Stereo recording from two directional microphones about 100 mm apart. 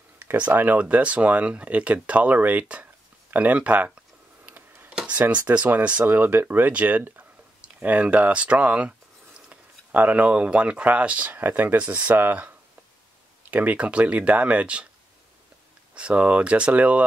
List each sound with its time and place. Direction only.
0.2 s speech: 20° right (ahead or behind)
4.5 s a sound: 20° right (ahead or behind)
4.9 s speech: 10° right (ahead or behind)
15.9 s speech: 10° right (ahead or behind)